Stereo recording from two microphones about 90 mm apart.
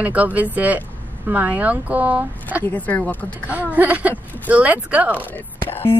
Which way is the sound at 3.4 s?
15° right (ahead or behind).